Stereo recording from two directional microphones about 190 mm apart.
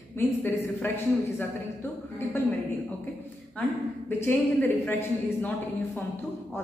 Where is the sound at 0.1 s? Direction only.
10° left (ahead or behind).